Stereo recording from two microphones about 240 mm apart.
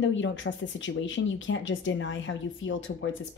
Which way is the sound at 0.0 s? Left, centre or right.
Left.